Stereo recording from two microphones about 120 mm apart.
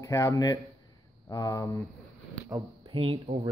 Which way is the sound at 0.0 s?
25° left (ahead or behind).